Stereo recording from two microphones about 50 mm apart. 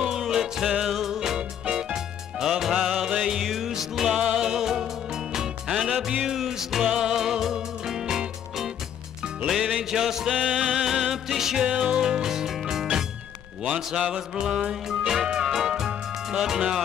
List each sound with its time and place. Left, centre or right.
0.0 s music: centre